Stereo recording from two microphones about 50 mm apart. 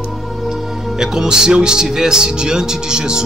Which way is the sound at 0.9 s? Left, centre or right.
Centre.